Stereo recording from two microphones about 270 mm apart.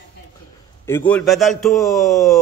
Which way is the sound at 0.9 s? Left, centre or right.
Centre.